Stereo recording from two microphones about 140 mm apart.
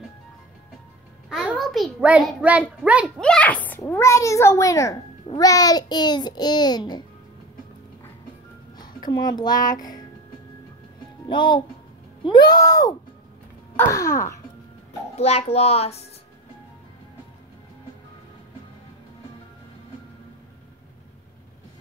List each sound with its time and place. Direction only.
1.3 s a sound: 5° right (ahead or behind)
2.0 s a child's voice: 10° right (ahead or behind)
3.2 s a child's voice: 5° left (ahead or behind); by 7.1 s 30° left (ahead or behind)
8.7 s a child's voice: 30° left (ahead or behind)
11.2 s a child's voice: 35° left (ahead or behind)
15.1 s a child's voice: 50° left (ahead or behind)